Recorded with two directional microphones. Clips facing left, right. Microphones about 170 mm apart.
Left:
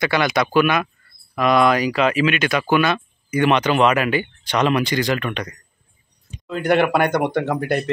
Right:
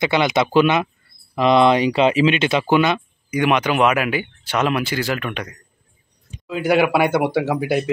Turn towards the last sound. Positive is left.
turn(degrees=-5)  # may be behind; listen again after turning